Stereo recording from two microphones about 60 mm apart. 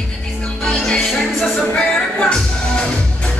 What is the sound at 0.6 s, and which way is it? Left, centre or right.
Music, centre.